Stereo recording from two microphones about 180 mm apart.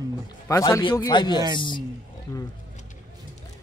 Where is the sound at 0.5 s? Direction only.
15° left (ahead or behind).